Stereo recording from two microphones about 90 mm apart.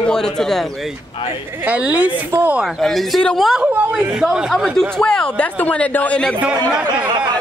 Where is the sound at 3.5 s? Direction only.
10° right (ahead or behind).